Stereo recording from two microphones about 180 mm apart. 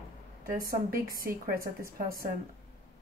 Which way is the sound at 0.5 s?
55° right (ahead or behind).